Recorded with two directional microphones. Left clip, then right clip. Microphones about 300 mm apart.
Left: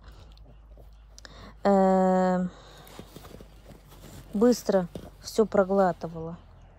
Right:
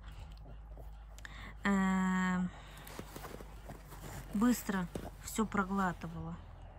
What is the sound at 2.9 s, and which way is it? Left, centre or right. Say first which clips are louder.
Clip-clop: right 1 dB; centre.